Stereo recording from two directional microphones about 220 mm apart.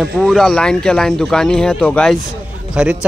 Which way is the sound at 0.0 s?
Centre (ahead or behind).